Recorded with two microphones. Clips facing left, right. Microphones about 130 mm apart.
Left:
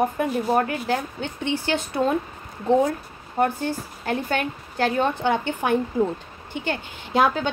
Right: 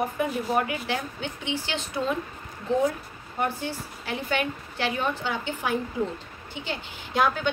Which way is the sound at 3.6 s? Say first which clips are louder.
Left 6 dB; 45° left (ahead or behind).